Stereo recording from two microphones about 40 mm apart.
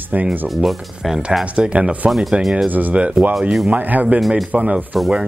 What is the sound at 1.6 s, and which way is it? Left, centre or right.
Speech, right.